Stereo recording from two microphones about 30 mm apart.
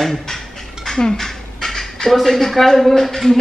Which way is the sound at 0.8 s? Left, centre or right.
Left.